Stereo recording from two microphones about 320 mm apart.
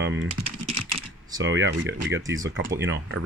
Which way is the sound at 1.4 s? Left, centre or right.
Right.